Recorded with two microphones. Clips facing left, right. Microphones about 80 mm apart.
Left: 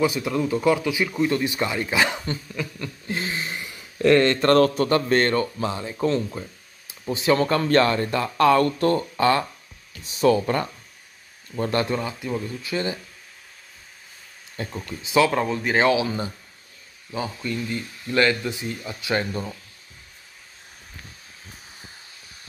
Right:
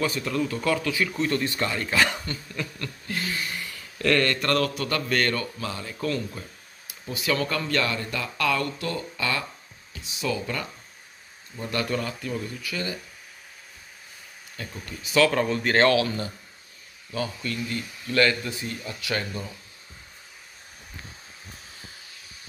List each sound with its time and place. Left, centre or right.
0.0 s speech: centre; by 10.7 s left
11.7 s speech: left
12.0 s speech: centre
14.6 s speech: left
15.0 s speech: centre